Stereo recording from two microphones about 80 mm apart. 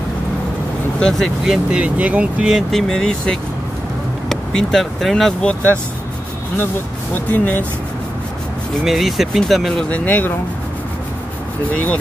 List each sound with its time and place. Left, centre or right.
0.9 s speech: centre
1.4 s speech: centre
2.7 s speech: centre
7.2 s speech: left
8.8 s speech: centre
9.8 s speech: centre
11.7 s speech: centre